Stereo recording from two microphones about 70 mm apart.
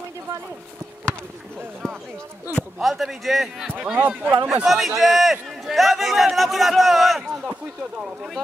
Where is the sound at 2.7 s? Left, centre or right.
Centre.